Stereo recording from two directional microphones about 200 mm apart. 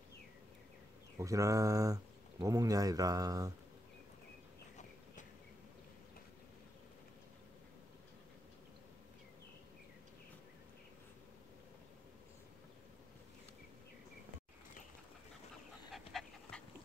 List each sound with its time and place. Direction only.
1.1 s speech: 15° right (ahead or behind)
15.9 s dog: centre (ahead or behind)